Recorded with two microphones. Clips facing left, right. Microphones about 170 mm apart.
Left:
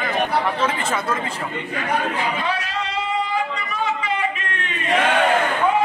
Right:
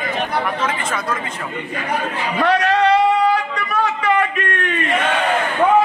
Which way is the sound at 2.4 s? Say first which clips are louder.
Right 10 dB; 70° right (ahead or behind).